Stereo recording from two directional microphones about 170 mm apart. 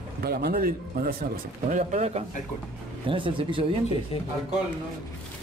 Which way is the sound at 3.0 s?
30° right (ahead or behind).